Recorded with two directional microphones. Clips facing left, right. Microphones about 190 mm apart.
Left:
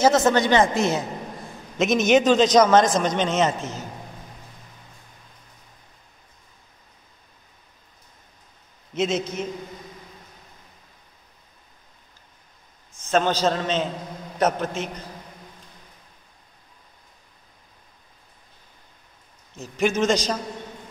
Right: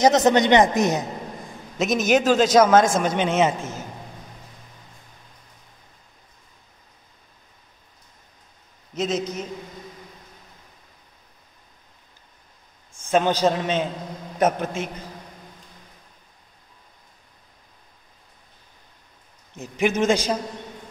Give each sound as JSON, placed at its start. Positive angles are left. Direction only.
{"t": 0.0, "sound": "a woman's voice", "side_deg": -20}
{"t": 1.8, "sound": "a man's voice", "side_deg": -5}
{"t": 8.9, "sound": "a man's voice", "side_deg": 0}
{"t": 13.0, "sound": "a man's voice", "side_deg": -15}
{"t": 19.5, "sound": "a man's voice", "side_deg": -15}